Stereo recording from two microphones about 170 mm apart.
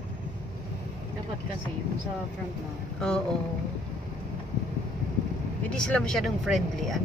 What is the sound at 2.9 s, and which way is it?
Speech, 5° left (ahead or behind).